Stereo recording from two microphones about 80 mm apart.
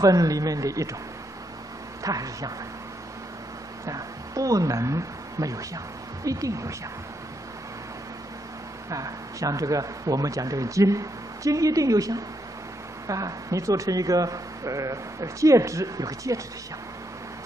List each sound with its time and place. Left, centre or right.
0.0 s speech: right
2.0 s speech: right
3.8 s speech: right
8.9 s speech: right